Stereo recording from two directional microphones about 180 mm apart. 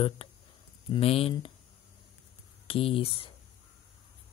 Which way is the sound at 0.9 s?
35° left (ahead or behind).